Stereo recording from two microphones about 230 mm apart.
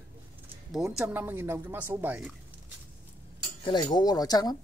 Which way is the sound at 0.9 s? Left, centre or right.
Centre.